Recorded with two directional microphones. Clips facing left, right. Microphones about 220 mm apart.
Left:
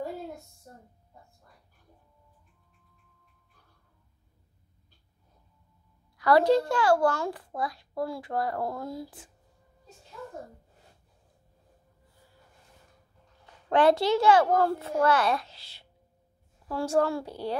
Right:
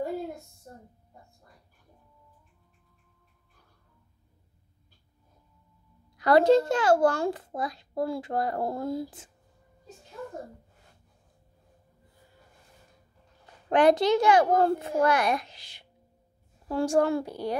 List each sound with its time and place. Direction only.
6.1 s a child's voice: 20° right (ahead or behind)
13.7 s a child's voice: 15° right (ahead or behind)